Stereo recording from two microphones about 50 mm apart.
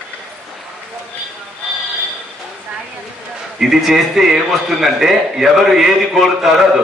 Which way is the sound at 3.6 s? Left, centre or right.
Centre.